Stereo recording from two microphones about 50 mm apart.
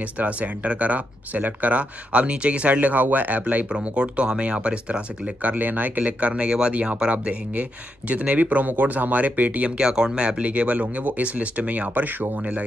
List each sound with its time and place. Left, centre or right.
0.0 s speech: right
5.4 s speech: right
9.8 s speech: centre; by 12.6 s right